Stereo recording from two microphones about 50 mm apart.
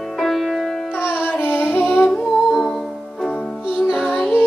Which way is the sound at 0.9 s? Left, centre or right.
Centre.